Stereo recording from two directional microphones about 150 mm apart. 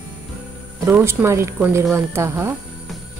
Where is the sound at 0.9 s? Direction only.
15° right (ahead or behind).